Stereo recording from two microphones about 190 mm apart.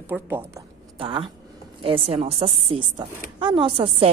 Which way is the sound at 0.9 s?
25° right (ahead or behind).